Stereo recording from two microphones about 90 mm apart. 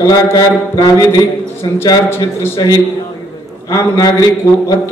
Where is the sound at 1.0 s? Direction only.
35° left (ahead or behind).